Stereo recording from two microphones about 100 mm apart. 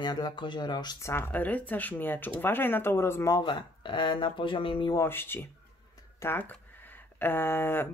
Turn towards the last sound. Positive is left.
turn(degrees=20)  # may be behind; listen again after turning